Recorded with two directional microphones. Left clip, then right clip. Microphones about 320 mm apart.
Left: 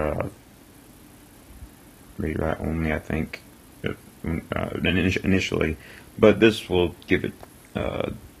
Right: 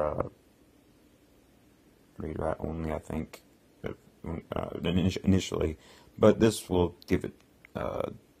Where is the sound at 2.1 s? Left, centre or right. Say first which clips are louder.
Left 6 dB; centre.